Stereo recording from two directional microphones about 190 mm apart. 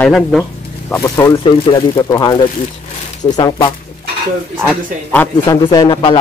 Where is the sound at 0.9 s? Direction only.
15° left (ahead or behind).